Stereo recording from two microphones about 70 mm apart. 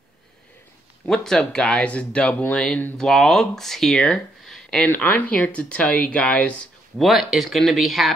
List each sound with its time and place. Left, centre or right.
1.0 s speech: centre
4.8 s speech: left
7.0 s speech: centre